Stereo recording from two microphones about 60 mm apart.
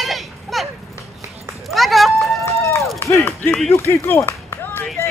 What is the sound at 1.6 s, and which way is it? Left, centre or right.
Run, centre.